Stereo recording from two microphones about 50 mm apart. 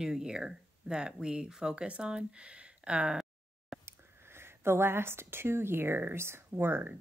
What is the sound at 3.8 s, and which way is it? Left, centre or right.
Speech, right.